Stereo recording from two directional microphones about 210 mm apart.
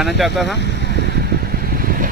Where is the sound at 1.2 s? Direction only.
45° right (ahead or behind).